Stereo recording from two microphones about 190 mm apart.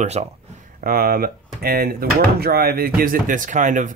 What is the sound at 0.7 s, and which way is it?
Speech, 50° right (ahead or behind).